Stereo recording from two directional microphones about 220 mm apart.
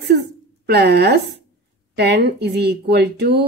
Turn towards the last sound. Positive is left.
turn(degrees=-50)  # may be behind; listen again after turning